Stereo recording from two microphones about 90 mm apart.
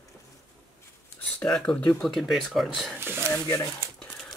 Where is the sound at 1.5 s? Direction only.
10° left (ahead or behind).